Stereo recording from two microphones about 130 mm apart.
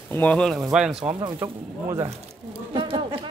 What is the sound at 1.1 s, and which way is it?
Speech, 35° right (ahead or behind).